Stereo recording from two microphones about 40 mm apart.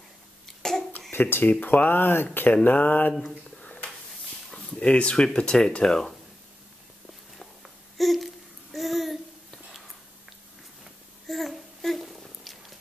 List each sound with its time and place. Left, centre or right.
0.5 s cough: centre
1.1 s speech: left
1.4 s speech: left
2.6 s speech: left
4.6 s speech: left
5.1 s speech: centre
5.9 s speech: centre
7.3 s a sound: centre
11.2 s a sound: centre